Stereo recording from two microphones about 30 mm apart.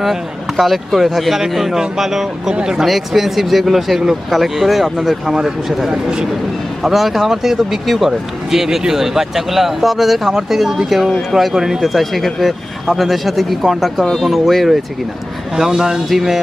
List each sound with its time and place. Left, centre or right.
0.0 s speech: centre
11.8 s speech: centre
15.5 s speech: centre